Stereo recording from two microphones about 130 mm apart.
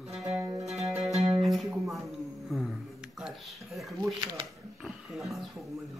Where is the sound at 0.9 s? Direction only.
5° right (ahead or behind).